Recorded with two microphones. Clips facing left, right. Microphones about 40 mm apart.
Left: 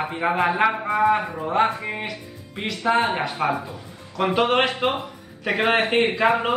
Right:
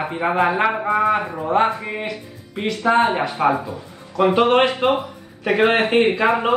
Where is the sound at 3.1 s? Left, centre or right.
Centre.